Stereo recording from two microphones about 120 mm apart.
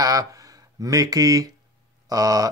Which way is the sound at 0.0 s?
30° right (ahead or behind).